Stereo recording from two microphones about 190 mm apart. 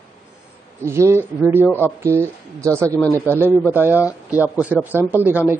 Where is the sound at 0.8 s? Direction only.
15° right (ahead or behind).